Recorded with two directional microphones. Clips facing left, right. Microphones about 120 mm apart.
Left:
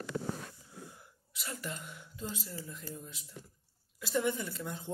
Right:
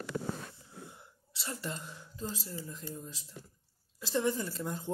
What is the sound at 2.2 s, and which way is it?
A woman's voice, 35° right (ahead or behind).